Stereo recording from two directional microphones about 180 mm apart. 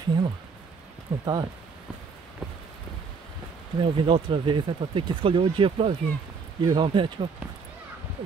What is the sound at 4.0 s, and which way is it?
Speech, 30° right (ahead or behind).